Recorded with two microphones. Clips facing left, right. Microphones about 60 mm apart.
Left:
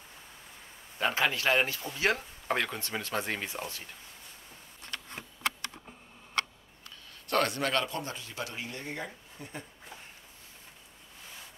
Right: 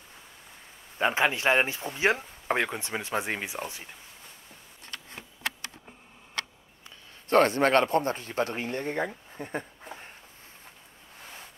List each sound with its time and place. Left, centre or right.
0.9 s speech: right
7.2 s speech: right